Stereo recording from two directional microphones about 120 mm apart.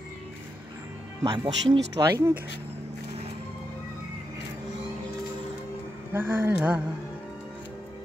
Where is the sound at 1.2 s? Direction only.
40° right (ahead or behind).